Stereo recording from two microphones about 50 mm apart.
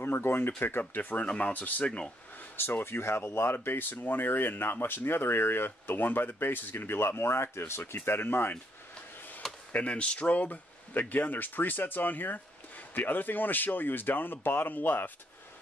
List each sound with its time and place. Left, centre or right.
0.0 s speech: left
2.5 s speech: left
9.4 s a sound: centre
9.8 s speech: left